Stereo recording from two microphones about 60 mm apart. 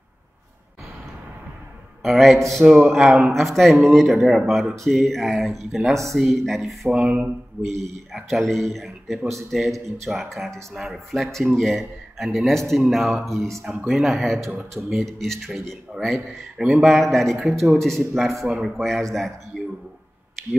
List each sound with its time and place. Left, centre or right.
2.0 s speech: centre
6.9 s speech: centre
7.8 s speech: centre
16.8 s speech: centre
19.5 s a sound: centre